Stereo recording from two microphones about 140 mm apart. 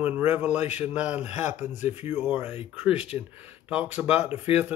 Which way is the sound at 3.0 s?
45° left (ahead or behind).